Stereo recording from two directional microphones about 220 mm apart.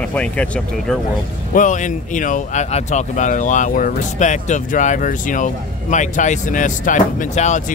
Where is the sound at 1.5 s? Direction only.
35° left (ahead or behind).